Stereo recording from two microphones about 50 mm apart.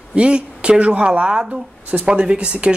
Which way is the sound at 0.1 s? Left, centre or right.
Right.